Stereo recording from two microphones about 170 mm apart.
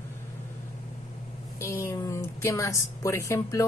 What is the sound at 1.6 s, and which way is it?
A woman's voice, 15° left (ahead or behind).